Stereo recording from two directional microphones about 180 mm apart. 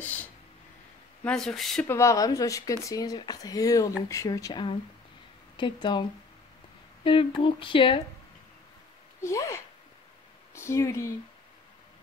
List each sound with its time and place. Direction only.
0.0 s a sound: 10° left (ahead or behind)
1.2 s speech: 5° left (ahead or behind)
1.9 s speech: 15° left (ahead or behind)
7.1 s speech: 30° left (ahead or behind)
9.2 s speech: 15° left (ahead or behind)